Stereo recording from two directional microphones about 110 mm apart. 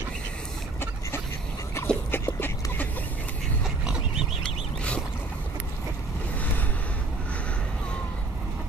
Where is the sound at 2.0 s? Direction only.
20° left (ahead or behind).